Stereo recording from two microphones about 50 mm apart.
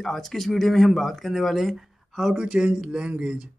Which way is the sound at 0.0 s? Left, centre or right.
Centre.